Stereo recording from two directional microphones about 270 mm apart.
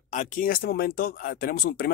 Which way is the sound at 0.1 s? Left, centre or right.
Left.